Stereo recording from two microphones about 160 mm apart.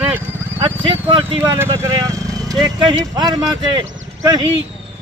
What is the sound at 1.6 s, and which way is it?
Speech, 20° right (ahead or behind).